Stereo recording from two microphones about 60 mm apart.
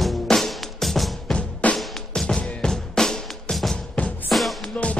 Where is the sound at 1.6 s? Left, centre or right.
Left.